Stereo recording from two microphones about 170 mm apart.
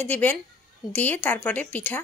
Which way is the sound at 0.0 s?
10° left (ahead or behind).